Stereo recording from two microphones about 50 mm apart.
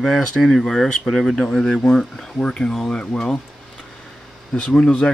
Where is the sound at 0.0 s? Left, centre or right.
Centre; by 3.2 s left.